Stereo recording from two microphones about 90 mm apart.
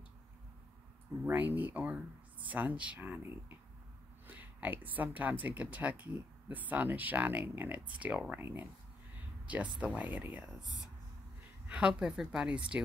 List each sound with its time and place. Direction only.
1.2 s a woman's voice: 20° right (ahead or behind)
11.6 s a sound: 15° right (ahead or behind)
11.9 s speech: 5° right (ahead or behind)